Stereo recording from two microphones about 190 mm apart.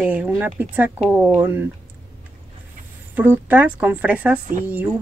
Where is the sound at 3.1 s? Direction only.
10° right (ahead or behind).